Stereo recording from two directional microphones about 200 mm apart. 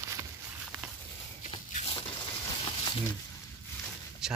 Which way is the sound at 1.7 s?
30° left (ahead or behind).